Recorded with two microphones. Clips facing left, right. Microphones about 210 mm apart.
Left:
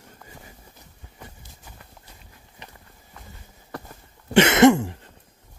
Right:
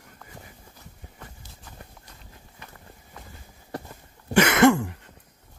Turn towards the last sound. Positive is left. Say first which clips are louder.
# left 3 dB
turn(degrees=25)  # may be behind; listen again after turning